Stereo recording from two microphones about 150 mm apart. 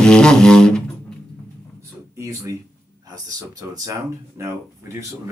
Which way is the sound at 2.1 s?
20° right (ahead or behind).